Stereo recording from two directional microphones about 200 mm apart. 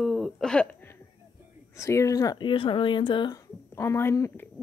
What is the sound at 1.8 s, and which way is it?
Speech, 15° left (ahead or behind).